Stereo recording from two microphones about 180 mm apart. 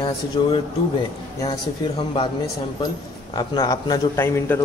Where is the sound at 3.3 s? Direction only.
20° left (ahead or behind).